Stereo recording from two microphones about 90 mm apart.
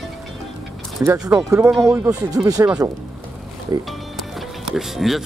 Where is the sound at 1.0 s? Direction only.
30° right (ahead or behind).